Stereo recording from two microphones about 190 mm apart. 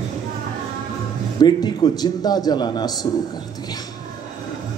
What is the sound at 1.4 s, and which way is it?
A man's voice, 20° left (ahead or behind).